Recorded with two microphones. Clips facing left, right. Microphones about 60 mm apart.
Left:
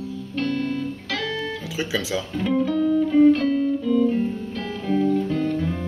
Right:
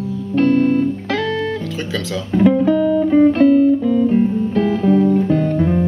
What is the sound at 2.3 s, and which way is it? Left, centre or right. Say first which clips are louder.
Music: right 10 dB; right.